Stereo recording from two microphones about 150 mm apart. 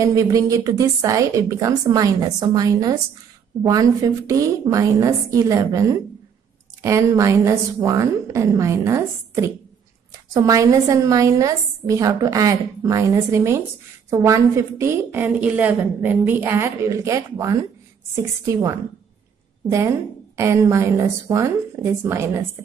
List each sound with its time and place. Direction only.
0.0 s a woman's voice: 20° right (ahead or behind)